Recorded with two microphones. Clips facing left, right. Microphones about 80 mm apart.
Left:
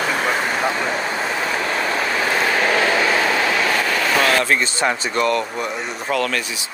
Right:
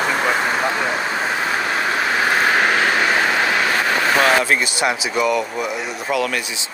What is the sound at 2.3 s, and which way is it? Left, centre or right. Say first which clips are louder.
Vehicle: right 1 dB; right.